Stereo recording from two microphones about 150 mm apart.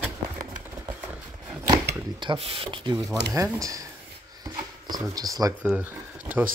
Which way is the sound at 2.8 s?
25° right (ahead or behind).